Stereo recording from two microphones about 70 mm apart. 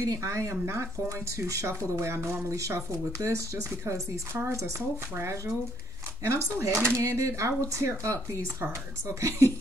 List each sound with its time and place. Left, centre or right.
0.0 s speech: right